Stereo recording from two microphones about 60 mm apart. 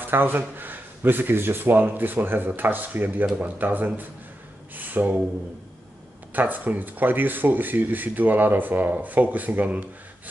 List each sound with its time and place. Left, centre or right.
0.0 s speech: right
4.7 s a sound: right
6.3 s speech: right